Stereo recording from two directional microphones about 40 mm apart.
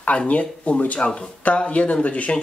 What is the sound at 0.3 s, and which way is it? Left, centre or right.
Speech, left.